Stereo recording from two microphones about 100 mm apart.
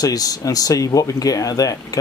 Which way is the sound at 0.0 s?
40° left (ahead or behind).